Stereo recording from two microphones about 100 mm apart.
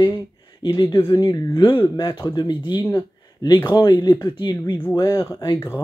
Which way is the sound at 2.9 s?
45° left (ahead or behind).